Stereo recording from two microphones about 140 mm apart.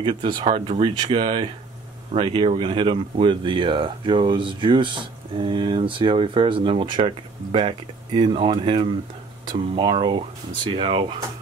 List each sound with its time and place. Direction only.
0.0 s speech: 35° right (ahead or behind)